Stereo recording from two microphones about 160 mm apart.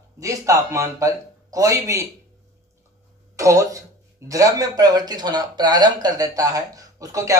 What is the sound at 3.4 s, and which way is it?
Speech, 20° right (ahead or behind).